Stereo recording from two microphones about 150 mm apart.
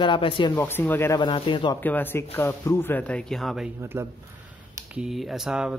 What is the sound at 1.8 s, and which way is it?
Speech, 10° left (ahead or behind).